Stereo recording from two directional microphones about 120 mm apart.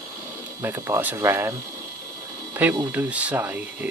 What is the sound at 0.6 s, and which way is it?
Speech, 20° right (ahead or behind).